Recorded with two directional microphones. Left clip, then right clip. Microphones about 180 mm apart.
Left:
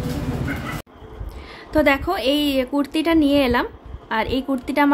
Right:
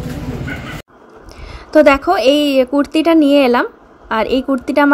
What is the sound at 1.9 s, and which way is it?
A woman's voice, 20° right (ahead or behind).